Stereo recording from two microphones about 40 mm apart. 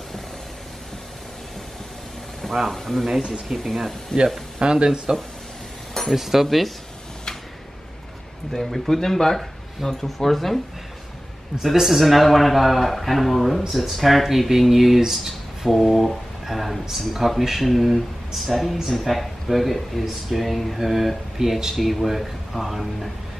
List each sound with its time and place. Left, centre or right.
2.4 s speech: centre
4.6 s speech: right
6.1 s speech: centre
8.5 s speech: centre
11.7 s speech: centre